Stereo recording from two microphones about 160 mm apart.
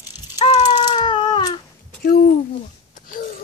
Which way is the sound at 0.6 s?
25° left (ahead or behind).